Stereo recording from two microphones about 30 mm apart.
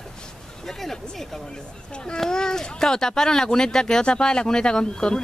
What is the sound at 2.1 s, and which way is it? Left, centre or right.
Speech, left.